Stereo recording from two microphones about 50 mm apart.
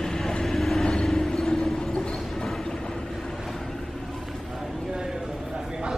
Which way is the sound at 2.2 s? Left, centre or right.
Centre.